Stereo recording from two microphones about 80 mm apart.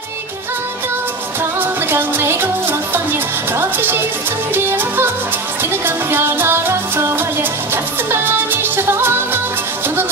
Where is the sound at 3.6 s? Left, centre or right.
Right.